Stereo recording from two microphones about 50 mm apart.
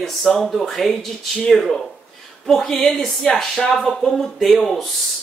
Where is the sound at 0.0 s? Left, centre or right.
Centre.